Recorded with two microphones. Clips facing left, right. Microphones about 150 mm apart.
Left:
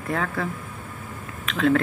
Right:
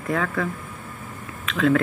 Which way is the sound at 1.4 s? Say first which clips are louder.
Right 1 dB; 35° left (ahead or behind).